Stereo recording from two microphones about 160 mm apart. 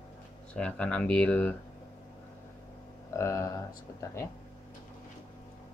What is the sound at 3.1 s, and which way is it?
Speech, 20° left (ahead or behind).